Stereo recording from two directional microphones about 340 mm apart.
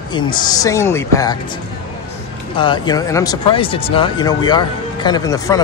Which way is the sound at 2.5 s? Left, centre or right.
Centre.